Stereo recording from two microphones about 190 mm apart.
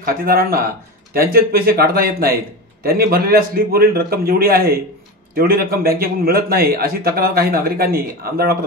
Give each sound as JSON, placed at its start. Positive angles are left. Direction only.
{"t": 0.0, "sound": "a man's voice", "side_deg": -50}